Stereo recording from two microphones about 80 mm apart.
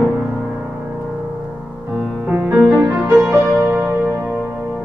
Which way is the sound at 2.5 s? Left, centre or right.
Right.